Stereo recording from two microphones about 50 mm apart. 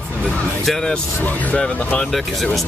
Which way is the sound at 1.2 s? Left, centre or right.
Left.